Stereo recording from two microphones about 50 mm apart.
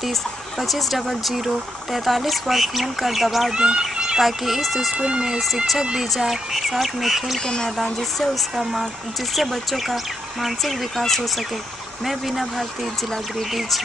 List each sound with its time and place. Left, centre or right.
0.6 s speech: centre
3.5 s speech: centre
4.9 s speech: right
6.1 s speech: centre
7.3 s speech: centre
7.7 s speech: centre